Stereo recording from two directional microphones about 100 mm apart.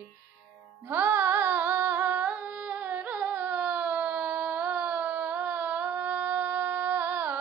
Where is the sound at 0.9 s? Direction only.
20° right (ahead or behind).